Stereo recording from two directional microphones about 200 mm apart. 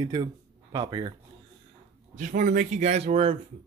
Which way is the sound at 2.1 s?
40° right (ahead or behind).